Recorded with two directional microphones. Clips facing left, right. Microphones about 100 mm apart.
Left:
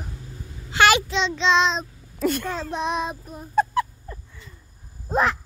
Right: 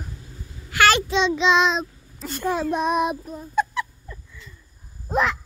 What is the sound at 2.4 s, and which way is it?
Speech, 10° right (ahead or behind).